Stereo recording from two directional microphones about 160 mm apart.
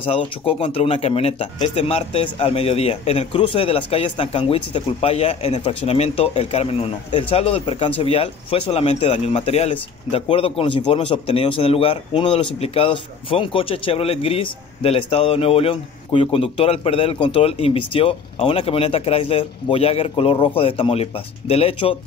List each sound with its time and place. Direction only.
0.0 s speech: 35° left (ahead or behind)